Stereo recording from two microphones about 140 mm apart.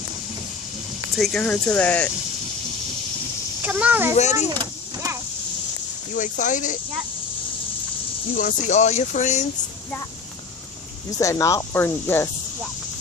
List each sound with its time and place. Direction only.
1.1 s speech: centre (ahead or behind)
3.6 s a child's voice: 10° right (ahead or behind)
4.1 s speech: 55° left (ahead or behind)
4.5 s vehicle: 25° right (ahead or behind)
6.1 s speech: 65° left (ahead or behind)
8.4 s speech: 65° left (ahead or behind)
11.1 s speech: 20° left (ahead or behind)